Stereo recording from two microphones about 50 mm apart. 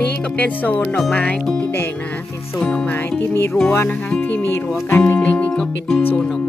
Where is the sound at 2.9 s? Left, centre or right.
Left.